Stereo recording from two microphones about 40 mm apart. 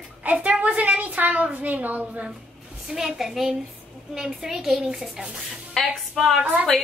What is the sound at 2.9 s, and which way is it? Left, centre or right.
A woman's voice, centre.